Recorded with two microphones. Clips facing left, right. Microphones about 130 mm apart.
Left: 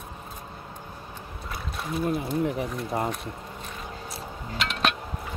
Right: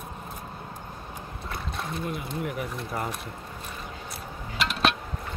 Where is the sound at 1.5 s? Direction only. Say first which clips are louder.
Left 2 dB; centre (ahead or behind).